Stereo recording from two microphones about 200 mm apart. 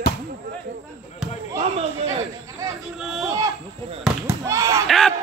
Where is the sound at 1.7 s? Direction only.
30° right (ahead or behind).